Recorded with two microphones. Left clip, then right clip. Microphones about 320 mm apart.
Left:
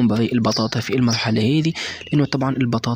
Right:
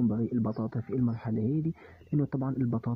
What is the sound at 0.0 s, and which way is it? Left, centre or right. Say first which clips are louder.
Speech: left 12 dB; right.